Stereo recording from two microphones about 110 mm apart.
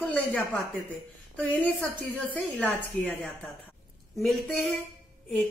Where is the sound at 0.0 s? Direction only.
15° left (ahead or behind).